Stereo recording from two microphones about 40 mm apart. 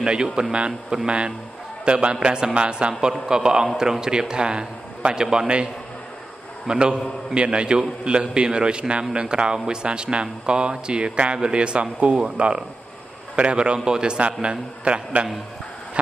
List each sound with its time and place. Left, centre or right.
0.0 s a man's voice: right
6.7 s a man's voice: right